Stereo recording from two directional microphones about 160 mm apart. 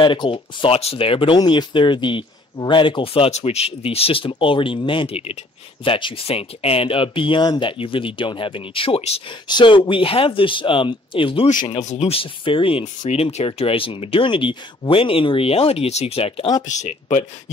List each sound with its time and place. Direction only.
0.0 s speech: 30° left (ahead or behind)
11.8 s speech: 45° left (ahead or behind)
12.8 s speech: 45° left (ahead or behind)
16.6 s speech: 50° left (ahead or behind)